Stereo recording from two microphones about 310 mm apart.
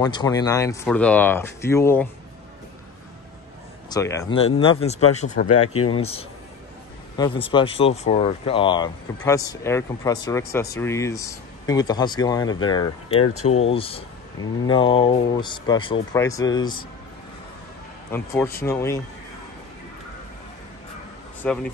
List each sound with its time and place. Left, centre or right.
0.0 s speech: centre
3.9 s speech: centre
5.6 s speech: left
5.9 s speech: centre
18.1 s speech: centre
21.4 s speech: centre